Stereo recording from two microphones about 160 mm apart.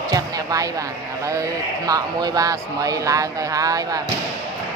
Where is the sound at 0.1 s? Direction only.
20° right (ahead or behind).